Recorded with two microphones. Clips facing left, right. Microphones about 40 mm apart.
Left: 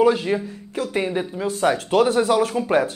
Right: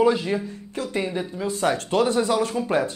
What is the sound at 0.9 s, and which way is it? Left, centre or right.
Speech, centre.